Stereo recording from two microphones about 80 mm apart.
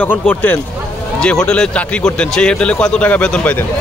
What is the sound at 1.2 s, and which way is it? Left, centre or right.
A man's voice, centre.